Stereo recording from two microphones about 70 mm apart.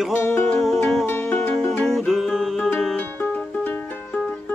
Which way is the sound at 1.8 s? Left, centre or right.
Centre.